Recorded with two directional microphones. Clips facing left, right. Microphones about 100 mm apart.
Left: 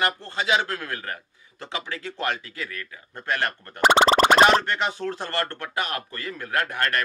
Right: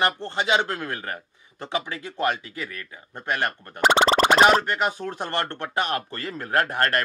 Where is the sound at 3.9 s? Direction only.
50° left (ahead or behind).